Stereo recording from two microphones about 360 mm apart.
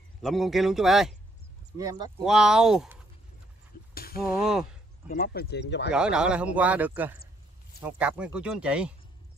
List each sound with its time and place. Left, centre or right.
0.2 s speech: centre
3.9 s a sound: left
4.2 s speech: centre
5.0 s speech: left
5.9 s speech: centre